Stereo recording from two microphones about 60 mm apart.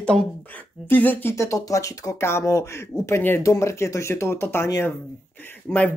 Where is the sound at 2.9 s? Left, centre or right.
Left.